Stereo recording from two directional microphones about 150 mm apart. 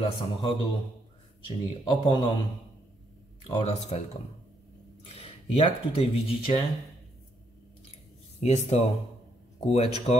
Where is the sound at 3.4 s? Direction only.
40° left (ahead or behind).